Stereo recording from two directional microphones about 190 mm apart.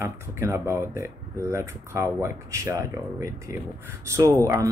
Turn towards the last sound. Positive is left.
turn(degrees=-15)  # may be behind; listen again after turning